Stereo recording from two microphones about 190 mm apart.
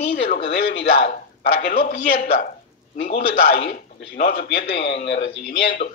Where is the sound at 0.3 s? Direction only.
55° left (ahead or behind).